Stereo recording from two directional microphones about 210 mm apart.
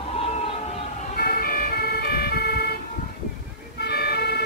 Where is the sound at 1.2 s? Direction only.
45° left (ahead or behind).